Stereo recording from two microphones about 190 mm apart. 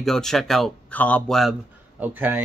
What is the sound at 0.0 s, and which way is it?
Speech, centre (ahead or behind).